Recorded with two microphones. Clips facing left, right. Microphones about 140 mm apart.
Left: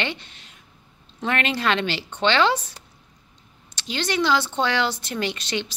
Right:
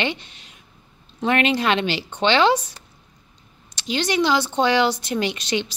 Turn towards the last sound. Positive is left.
turn(degrees=-15)  # may be behind; listen again after turning